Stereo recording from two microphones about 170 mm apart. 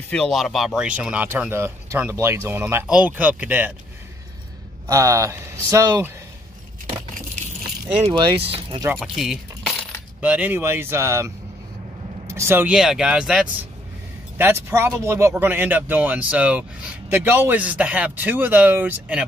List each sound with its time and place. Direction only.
0.1 s speech: 5° left (ahead or behind)
4.8 s speech: 20° right (ahead or behind)
7.8 s speech: 25° right (ahead or behind)
8.8 s speech: 5° right (ahead or behind)
14.4 s speech: 15° right (ahead or behind)